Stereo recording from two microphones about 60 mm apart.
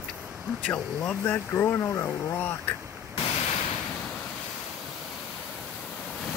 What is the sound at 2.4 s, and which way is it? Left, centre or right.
Speech, left.